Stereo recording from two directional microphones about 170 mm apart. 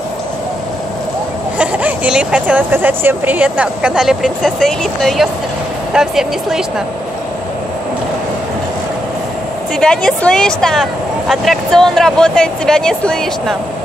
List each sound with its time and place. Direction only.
1.6 s speech: 10° right (ahead or behind)
9.8 s speech: 5° left (ahead or behind)